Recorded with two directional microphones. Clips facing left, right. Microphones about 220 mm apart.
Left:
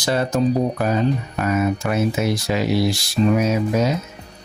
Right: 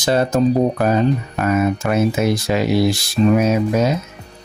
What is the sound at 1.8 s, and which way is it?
Speech, 60° right (ahead or behind).